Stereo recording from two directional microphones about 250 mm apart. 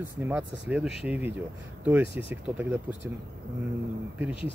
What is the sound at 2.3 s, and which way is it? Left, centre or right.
Speech, centre.